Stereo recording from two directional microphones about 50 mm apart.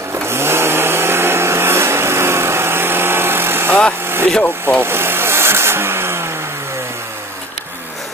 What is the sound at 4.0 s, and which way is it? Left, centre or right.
Vehicle, right.